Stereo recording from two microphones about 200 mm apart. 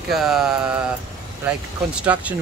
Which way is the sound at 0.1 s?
Centre (ahead or behind).